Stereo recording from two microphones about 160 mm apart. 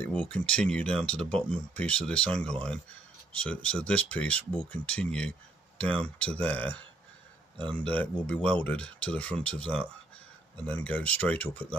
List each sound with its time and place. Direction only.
0.0 s speech: 5° left (ahead or behind)
7.7 s speech: 10° left (ahead or behind)